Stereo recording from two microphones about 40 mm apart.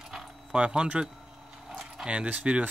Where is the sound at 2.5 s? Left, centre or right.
Right.